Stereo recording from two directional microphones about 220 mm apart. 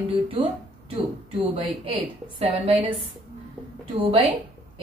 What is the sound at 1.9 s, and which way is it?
A woman's voice, 25° right (ahead or behind).